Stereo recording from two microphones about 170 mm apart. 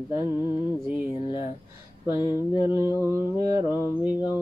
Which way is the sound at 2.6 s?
15° right (ahead or behind).